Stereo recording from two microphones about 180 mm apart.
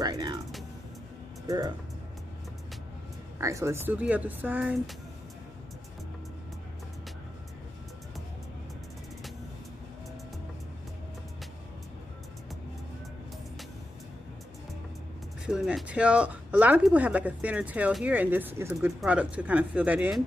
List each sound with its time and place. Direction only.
0.0 s music: 20° right (ahead or behind)
3.3 s speech: 15° right (ahead or behind)
15.4 s speech: 5° right (ahead or behind)